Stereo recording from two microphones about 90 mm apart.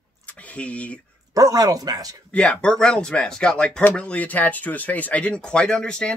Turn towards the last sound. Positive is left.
turn(degrees=10)  # may be behind; listen again after turning